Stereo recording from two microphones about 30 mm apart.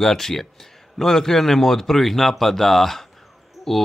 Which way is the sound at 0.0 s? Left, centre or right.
Centre.